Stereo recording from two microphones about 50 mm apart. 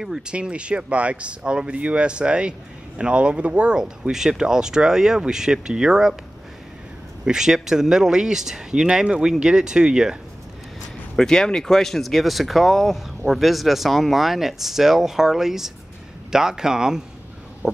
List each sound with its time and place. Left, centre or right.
0.3 s speech: right
4.1 s speech: centre
7.2 s speech: centre
11.1 s speech: centre